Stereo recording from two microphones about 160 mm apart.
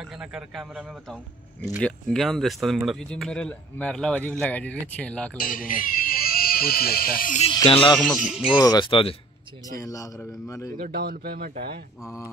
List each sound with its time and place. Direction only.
0.0 s speech: 5° right (ahead or behind)
5.4 s speech: 60° left (ahead or behind)
7.6 s speech: 35° left (ahead or behind)
8.0 s speech: centre (ahead or behind)
8.6 s speech: 30° left (ahead or behind)
9.7 s a man's voice: 20° left (ahead or behind)
10.8 s a man's voice: 70° right (ahead or behind)